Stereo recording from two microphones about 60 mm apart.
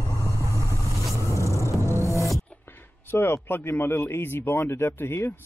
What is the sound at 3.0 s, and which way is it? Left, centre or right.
Speech, left.